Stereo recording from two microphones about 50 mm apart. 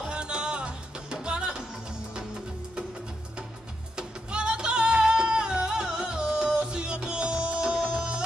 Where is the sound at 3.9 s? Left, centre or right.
Centre.